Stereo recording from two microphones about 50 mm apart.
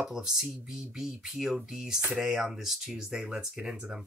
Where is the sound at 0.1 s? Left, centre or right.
Centre.